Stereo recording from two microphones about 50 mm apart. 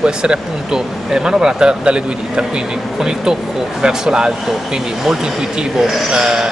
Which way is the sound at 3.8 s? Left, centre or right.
Centre.